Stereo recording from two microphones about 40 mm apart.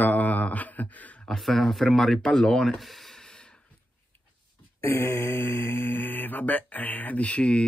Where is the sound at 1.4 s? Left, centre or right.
Centre.